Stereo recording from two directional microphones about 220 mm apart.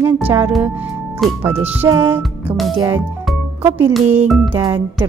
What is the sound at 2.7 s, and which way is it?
Speech, 20° right (ahead or behind).